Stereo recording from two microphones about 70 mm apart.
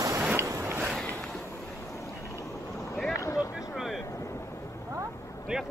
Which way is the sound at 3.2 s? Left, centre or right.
Left.